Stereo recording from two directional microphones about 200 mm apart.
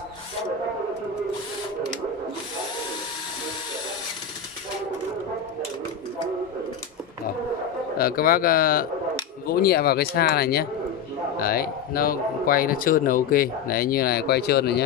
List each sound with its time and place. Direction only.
8.0 s speech: 45° left (ahead or behind)